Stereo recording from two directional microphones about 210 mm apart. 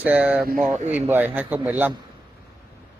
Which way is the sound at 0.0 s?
5° right (ahead or behind).